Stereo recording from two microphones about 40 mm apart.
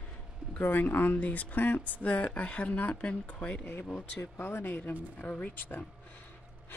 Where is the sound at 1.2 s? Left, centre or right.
Left.